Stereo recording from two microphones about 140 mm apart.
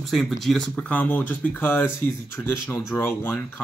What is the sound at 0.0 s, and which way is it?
Speech, centre (ahead or behind).